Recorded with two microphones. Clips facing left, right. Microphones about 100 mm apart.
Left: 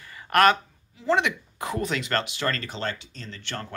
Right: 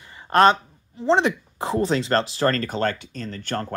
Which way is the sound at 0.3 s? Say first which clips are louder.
Right 3 dB; 25° right (ahead or behind).